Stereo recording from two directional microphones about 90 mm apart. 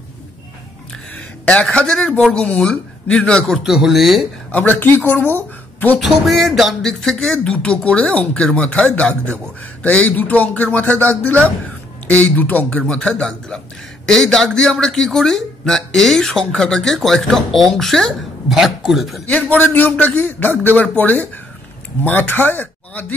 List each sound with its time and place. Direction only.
1.5 s a man's voice: 15° left (ahead or behind)
4.5 s a man's voice: 20° left (ahead or behind)
5.9 s a man's voice: centre (ahead or behind)
19.2 s a man's voice: 15° left (ahead or behind)